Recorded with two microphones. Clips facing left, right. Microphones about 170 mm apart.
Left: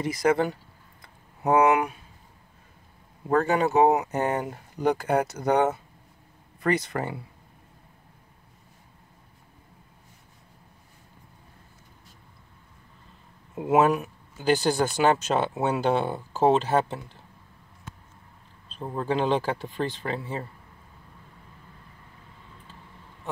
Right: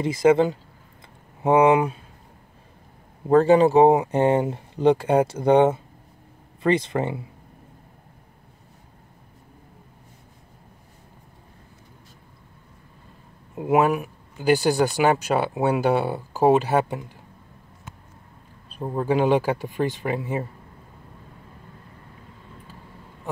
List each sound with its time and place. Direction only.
0.0 s speech: 25° right (ahead or behind)
3.3 s speech: 30° right (ahead or behind)
13.6 s speech: 10° right (ahead or behind)
18.7 s speech: 10° right (ahead or behind)